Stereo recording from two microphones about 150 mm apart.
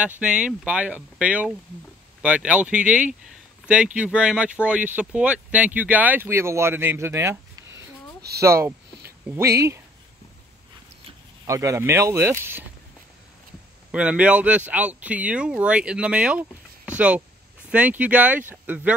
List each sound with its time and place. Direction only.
0.0 s speech: 5° right (ahead or behind)
11.4 s speech: 20° right (ahead or behind)
13.9 s speech: 10° right (ahead or behind)